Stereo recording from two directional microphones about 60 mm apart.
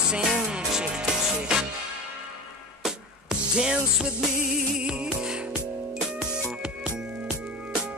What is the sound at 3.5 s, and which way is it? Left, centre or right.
Music, centre.